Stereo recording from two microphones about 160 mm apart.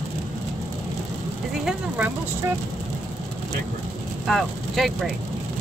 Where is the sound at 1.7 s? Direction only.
10° right (ahead or behind).